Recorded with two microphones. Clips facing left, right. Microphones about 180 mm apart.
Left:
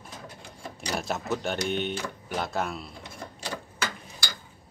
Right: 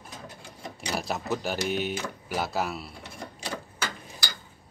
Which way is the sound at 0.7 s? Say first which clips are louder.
Even; centre (ahead or behind).